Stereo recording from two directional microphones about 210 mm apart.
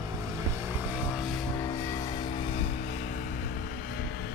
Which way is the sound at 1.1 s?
Centre (ahead or behind).